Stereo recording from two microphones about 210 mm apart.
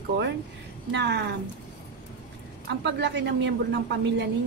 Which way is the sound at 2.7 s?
55° right (ahead or behind).